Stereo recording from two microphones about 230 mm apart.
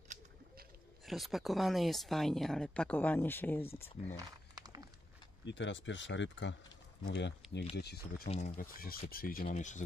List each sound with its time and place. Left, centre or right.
1.0 s speech: centre
4.2 s a sound: centre
5.4 s speech: left